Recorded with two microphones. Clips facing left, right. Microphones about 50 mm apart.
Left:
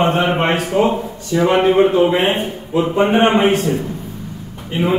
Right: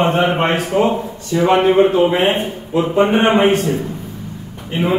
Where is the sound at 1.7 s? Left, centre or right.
Centre.